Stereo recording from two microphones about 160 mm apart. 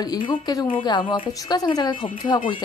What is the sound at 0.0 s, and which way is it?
A woman's voice, 25° left (ahead or behind).